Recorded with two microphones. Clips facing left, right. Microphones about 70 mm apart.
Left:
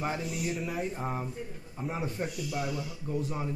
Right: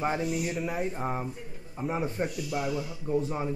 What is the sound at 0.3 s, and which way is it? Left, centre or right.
Speech, centre.